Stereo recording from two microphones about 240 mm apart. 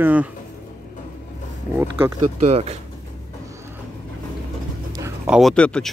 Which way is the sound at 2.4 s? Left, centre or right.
Right.